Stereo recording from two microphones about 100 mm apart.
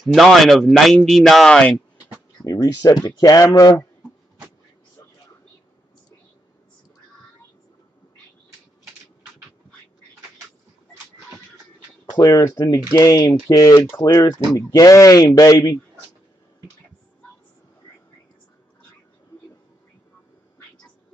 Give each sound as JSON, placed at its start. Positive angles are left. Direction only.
{"t": 0.0, "sound": "a man's voice", "side_deg": 0}
{"t": 2.4, "sound": "speech", "side_deg": 40}
{"t": 12.2, "sound": "speech", "side_deg": 40}
{"t": 13.7, "sound": "speech", "side_deg": 25}